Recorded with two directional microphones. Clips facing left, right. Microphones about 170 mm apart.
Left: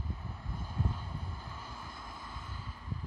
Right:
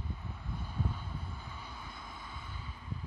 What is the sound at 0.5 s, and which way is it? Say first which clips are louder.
Vehicle: left 1 dB; 5° left (ahead or behind).